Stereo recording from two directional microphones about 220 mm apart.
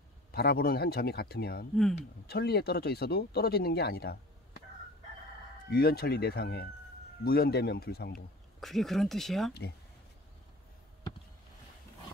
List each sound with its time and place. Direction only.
0.3 s speech: 45° left (ahead or behind)
5.7 s speech: 45° left (ahead or behind)
8.5 s speech: centre (ahead or behind)